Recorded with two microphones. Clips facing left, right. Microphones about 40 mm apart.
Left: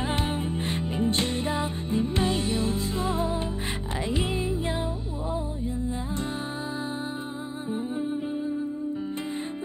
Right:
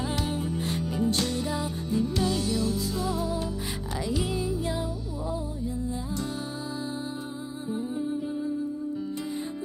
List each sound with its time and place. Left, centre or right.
0.0 s music: left